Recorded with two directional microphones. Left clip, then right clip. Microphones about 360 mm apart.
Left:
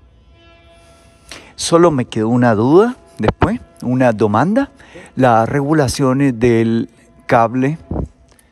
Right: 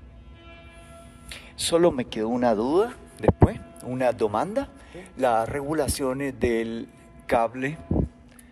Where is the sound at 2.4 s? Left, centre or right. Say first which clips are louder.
Left 11 dB; left.